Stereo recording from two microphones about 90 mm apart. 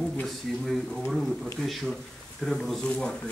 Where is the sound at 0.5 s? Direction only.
Centre (ahead or behind).